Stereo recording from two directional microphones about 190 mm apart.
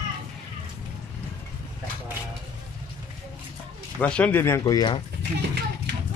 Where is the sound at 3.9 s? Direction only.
5° left (ahead or behind).